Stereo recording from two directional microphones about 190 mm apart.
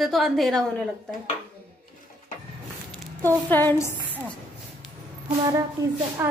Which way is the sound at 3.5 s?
10° left (ahead or behind).